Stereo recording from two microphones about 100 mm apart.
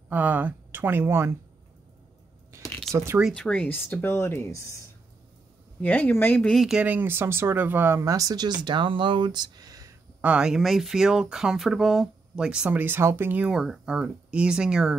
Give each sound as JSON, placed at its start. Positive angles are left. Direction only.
{"t": 0.1, "sound": "speech", "side_deg": -15}
{"t": 2.9, "sound": "speech", "side_deg": 5}
{"t": 5.8, "sound": "speech", "side_deg": 15}
{"t": 6.4, "sound": "speech", "side_deg": 0}
{"t": 6.8, "sound": "speech", "side_deg": -20}
{"t": 10.2, "sound": "speech", "side_deg": -10}